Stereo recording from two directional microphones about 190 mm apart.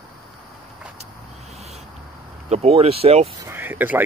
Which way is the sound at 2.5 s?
35° right (ahead or behind).